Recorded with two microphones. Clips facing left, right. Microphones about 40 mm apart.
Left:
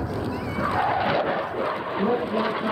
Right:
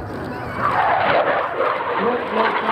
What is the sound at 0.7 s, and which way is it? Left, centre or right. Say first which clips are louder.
Vehicle: right 7 dB; right.